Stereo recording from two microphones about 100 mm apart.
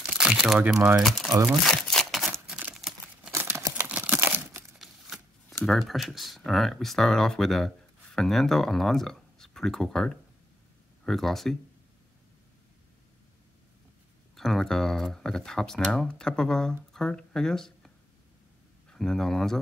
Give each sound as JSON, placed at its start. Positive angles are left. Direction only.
{"t": 0.0, "sound": "crumpling", "side_deg": -10}
{"t": 0.6, "sound": "speech", "side_deg": -10}
{"t": 1.0, "sound": "speech", "side_deg": 5}
{"t": 1.6, "sound": "crumpling", "side_deg": 5}
{"t": 3.3, "sound": "crumpling", "side_deg": -25}
{"t": 3.8, "sound": "crumpling", "side_deg": -15}
{"t": 4.7, "sound": "shuffling cards", "side_deg": 0}
{"t": 5.7, "sound": "speech", "side_deg": 0}
{"t": 14.3, "sound": "speech", "side_deg": 5}